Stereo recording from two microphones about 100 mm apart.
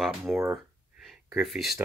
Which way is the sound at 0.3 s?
25° right (ahead or behind).